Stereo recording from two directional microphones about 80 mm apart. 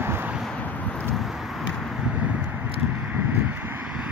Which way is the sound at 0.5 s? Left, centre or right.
Centre.